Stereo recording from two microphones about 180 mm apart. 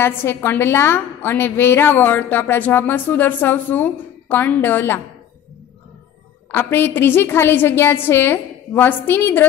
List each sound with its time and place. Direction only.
0.0 s a woman's voice: 15° left (ahead or behind)
6.5 s a woman's voice: 10° left (ahead or behind)